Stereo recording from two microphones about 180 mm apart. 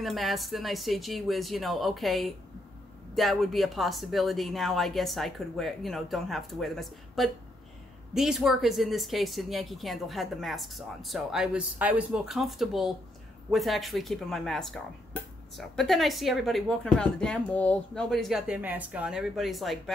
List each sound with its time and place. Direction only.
0.0 s a woman's voice: centre (ahead or behind)